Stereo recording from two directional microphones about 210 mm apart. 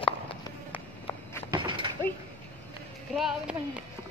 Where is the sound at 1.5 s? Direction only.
25° right (ahead or behind).